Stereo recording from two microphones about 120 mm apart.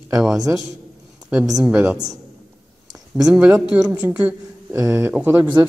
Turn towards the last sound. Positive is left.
turn(degrees=-15)  # may be behind; listen again after turning